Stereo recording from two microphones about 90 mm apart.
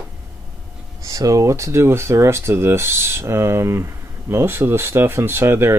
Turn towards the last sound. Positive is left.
turn(degrees=-30)  # may be behind; listen again after turning